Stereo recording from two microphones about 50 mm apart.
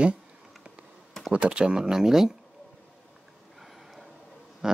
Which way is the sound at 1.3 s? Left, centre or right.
Right.